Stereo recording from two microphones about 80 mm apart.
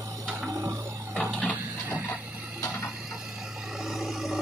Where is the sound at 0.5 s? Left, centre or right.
Right.